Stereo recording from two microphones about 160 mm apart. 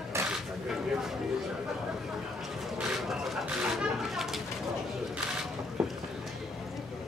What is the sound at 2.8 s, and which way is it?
Bird, 5° right (ahead or behind).